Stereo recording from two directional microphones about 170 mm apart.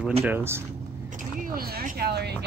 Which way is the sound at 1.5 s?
60° right (ahead or behind).